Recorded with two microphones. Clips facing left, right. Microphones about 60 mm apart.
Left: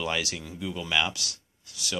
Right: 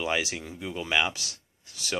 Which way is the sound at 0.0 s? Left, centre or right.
Right.